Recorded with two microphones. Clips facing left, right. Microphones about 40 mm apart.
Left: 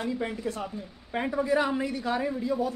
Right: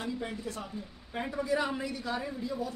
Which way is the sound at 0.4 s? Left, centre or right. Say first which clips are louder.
Left 6 dB; left.